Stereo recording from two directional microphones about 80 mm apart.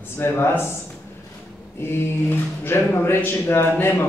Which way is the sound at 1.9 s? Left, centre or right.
Left.